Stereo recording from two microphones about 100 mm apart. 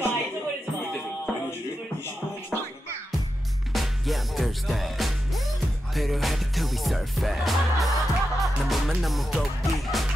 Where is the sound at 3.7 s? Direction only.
Centre (ahead or behind).